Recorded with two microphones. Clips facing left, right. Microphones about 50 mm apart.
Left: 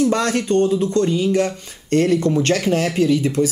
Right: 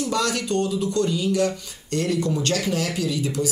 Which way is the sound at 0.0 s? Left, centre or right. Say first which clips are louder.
Left 6 dB; left.